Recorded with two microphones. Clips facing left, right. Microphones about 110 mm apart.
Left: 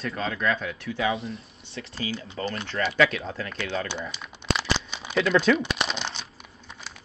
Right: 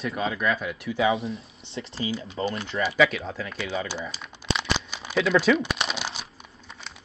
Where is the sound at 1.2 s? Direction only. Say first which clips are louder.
Right 3 dB; centre (ahead or behind).